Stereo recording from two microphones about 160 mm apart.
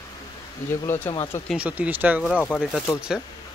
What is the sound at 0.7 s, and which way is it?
Speech, 15° left (ahead or behind).